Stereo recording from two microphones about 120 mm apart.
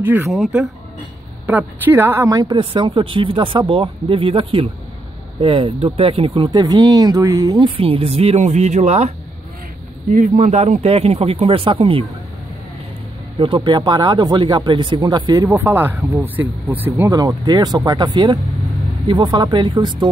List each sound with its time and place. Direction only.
0.0 s speech: 15° right (ahead or behind)
0.3 s speech: 5° right (ahead or behind)
1.4 s speech: 15° right (ahead or behind)
2.3 s speech: 40° right (ahead or behind)
7.6 s speech: 50° right (ahead or behind); by 9.1 s 70° right (ahead or behind)
10.1 s speech: 90° right; by 12.1 s 50° right (ahead or behind)
13.6 s speech: 40° right (ahead or behind)
15.4 s speech: 15° right (ahead or behind); by 20.1 s 40° right (ahead or behind)